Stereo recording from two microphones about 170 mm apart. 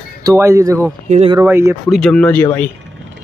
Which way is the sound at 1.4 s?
15° right (ahead or behind).